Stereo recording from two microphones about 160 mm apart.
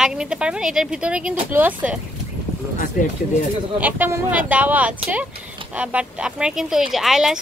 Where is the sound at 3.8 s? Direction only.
10° right (ahead or behind).